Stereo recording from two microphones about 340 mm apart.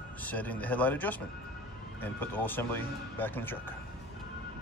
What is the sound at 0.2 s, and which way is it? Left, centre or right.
Speech, centre.